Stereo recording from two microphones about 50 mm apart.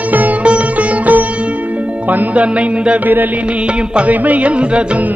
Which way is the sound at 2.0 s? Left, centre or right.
Right.